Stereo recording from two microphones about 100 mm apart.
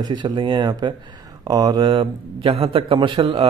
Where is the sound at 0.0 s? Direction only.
50° right (ahead or behind).